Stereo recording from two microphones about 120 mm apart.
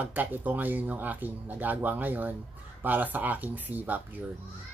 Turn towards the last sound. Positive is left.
turn(degrees=-15)  # may be behind; listen again after turning